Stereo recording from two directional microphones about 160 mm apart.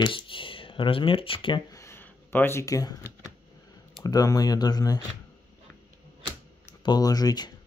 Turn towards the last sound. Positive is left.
turn(degrees=25)  # may be behind; listen again after turning